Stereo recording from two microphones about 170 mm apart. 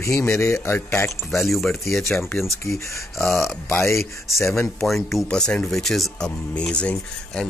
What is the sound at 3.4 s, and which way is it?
Speech, 5° left (ahead or behind).